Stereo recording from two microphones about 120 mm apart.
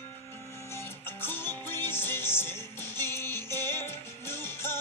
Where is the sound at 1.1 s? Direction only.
20° left (ahead or behind).